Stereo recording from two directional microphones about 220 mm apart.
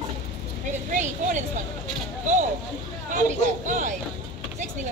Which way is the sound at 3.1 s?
35° right (ahead or behind).